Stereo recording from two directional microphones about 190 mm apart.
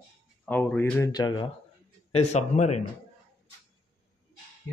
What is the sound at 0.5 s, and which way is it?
Speech, 10° left (ahead or behind).